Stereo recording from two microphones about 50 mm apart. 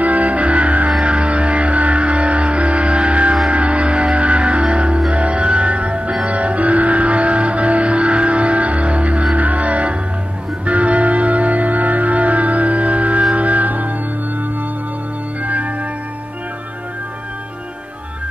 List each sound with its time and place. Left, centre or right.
0.0 s music: right
15.4 s organ: right